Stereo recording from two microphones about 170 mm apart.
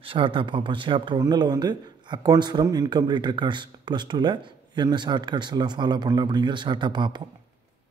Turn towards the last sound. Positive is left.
turn(degrees=-25)  # may be behind; listen again after turning